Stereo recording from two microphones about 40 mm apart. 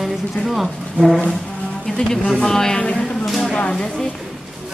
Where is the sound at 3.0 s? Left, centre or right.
Centre.